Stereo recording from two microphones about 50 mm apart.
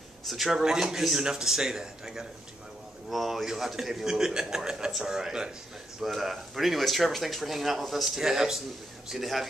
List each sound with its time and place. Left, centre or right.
0.3 s a man's voice: centre
6.0 s speech: centre